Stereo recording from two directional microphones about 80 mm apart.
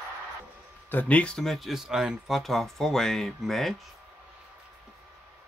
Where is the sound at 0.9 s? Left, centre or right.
Left.